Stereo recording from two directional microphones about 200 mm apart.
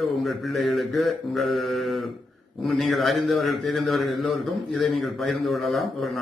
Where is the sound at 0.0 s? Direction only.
Centre (ahead or behind).